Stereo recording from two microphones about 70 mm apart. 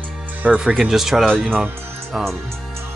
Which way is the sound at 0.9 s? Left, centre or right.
Centre.